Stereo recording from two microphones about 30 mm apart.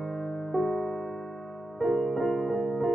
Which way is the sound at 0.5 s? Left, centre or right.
Centre.